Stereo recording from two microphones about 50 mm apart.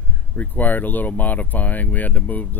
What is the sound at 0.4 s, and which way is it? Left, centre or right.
Speech, left.